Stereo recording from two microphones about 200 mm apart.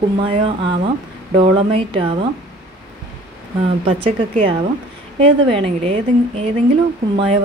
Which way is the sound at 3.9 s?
30° right (ahead or behind).